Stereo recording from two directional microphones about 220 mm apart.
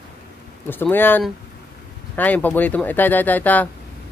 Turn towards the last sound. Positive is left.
turn(degrees=10)  # may be behind; listen again after turning